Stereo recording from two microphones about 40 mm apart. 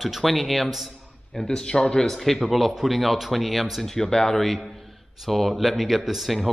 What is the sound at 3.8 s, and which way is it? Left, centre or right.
Speech, centre.